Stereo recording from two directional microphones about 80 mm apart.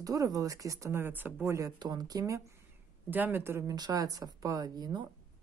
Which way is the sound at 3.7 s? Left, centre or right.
Right.